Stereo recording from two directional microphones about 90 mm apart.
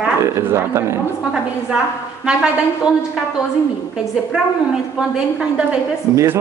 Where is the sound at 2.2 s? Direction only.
10° right (ahead or behind).